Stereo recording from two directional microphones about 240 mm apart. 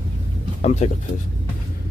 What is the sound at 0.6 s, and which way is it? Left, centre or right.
Speech, left.